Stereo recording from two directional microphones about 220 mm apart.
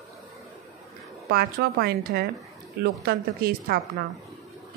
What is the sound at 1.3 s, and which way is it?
Speech, 45° right (ahead or behind).